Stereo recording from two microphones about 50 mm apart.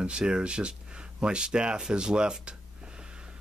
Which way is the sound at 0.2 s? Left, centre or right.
Centre.